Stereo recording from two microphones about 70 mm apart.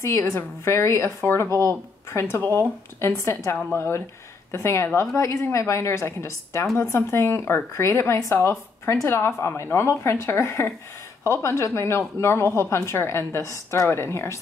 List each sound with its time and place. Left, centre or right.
0.0 s a woman's voice: left